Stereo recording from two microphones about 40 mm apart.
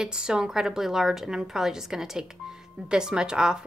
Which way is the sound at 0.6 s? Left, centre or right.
Centre.